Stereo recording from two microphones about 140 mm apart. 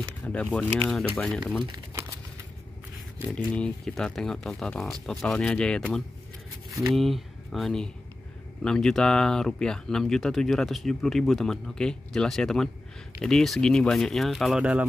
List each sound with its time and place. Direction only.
0.2 s speech: 10° left (ahead or behind)
3.5 s speech: 5° left (ahead or behind)
6.9 s speech: centre (ahead or behind)